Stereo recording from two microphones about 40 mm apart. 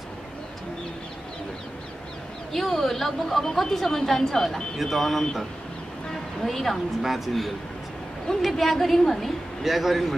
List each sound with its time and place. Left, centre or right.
2.5 s a woman's voice: centre
6.4 s speech: centre